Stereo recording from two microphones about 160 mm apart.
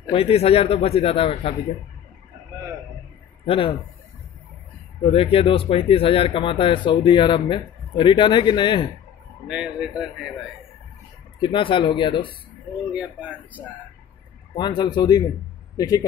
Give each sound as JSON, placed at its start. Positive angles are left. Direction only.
{"t": 0.1, "sound": "speech", "side_deg": 35}
{"t": 3.4, "sound": "speech", "side_deg": 35}
{"t": 5.0, "sound": "speech", "side_deg": 35}
{"t": 9.5, "sound": "speech", "side_deg": -5}
{"t": 11.3, "sound": "speech", "side_deg": 30}
{"t": 12.9, "sound": "speech", "side_deg": -10}
{"t": 14.5, "sound": "speech", "side_deg": 30}